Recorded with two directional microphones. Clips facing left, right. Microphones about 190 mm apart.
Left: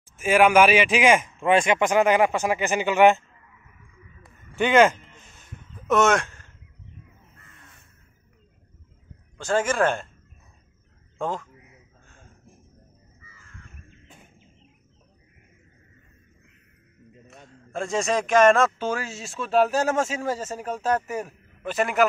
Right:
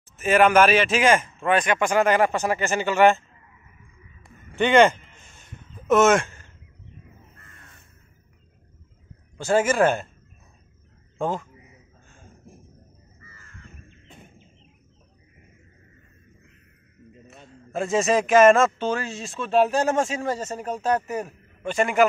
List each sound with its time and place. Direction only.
0.2 s speech: 10° left (ahead or behind)
1.5 s speech: 25° left (ahead or behind)
4.6 s a sound: 5° left (ahead or behind)
5.9 s speech: centre (ahead or behind)
9.4 s speech: 10° right (ahead or behind)
11.1 s a sound: centre (ahead or behind)
17.3 s a man's voice: 5° right (ahead or behind)